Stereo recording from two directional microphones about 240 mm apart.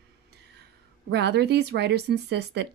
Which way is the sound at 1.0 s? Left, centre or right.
Right.